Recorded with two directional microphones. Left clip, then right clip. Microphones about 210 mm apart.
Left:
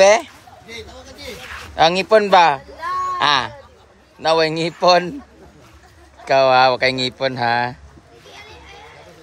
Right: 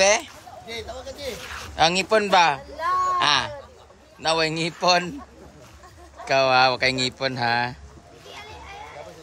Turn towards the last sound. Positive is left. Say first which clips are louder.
# left 5 dB
turn(degrees=-10)  # may be behind; listen again after turning